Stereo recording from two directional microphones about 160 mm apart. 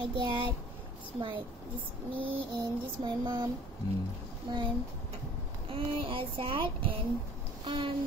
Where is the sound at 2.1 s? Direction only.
35° right (ahead or behind).